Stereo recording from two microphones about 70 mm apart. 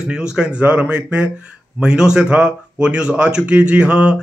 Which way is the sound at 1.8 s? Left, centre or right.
Centre.